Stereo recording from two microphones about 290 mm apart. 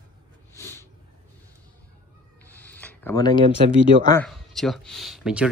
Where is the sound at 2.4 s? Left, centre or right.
Centre.